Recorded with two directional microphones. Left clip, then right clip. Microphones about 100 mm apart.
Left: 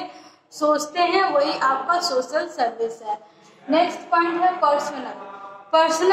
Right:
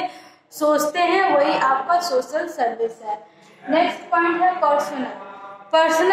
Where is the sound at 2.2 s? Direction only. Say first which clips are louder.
Even; 10° right (ahead or behind).